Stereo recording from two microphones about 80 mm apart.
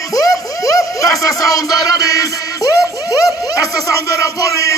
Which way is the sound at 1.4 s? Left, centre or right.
Left.